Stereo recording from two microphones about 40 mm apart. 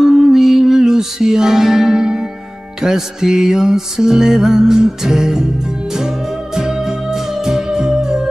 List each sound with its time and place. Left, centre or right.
0.0 s music: centre